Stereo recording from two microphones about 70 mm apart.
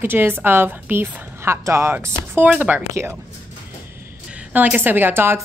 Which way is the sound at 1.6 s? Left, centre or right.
Right.